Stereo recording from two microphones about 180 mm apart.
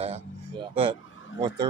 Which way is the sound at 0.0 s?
35° right (ahead or behind).